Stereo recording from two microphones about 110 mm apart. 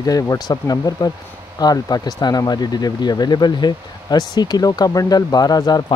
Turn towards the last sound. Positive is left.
turn(degrees=35)  # may be behind; listen again after turning